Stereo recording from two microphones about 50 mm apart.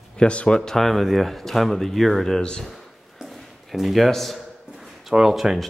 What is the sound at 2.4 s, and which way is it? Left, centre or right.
Speech, centre.